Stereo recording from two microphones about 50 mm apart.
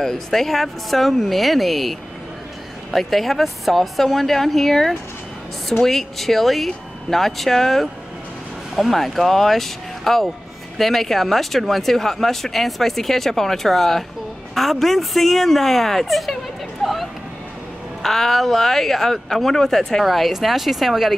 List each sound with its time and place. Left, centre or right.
0.0 s speech: centre